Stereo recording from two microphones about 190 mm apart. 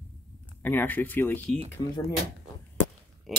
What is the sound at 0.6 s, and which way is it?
Speech, 10° left (ahead or behind).